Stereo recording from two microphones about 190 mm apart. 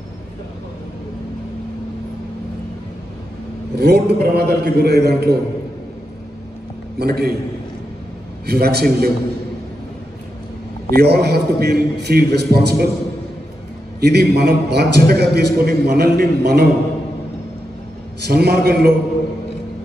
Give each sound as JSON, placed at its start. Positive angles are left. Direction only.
{"t": 3.7, "sound": "a man's voice", "side_deg": -55}
{"t": 7.0, "sound": "a man's voice", "side_deg": -55}
{"t": 8.5, "sound": "a man's voice", "side_deg": -55}
{"t": 11.0, "sound": "a man's voice", "side_deg": -55}
{"t": 13.9, "sound": "a man's voice", "side_deg": -60}
{"t": 18.2, "sound": "a man's voice", "side_deg": -55}